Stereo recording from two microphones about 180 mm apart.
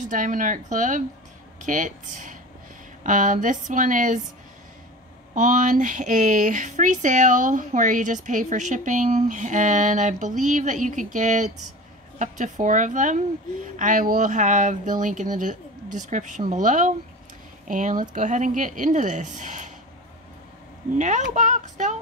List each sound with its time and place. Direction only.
0.0 s speech: 45° right (ahead or behind)
5.3 s speech: 45° right (ahead or behind)
21.0 s speech: 40° right (ahead or behind)